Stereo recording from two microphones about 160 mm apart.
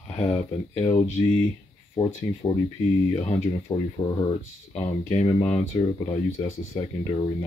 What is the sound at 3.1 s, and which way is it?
Speech, 40° left (ahead or behind).